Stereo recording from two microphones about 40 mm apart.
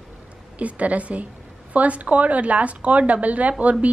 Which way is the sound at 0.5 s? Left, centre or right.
Right.